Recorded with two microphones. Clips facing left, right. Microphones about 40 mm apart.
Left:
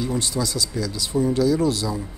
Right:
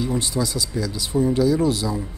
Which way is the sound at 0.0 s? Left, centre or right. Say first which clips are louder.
Right 1 dB; right.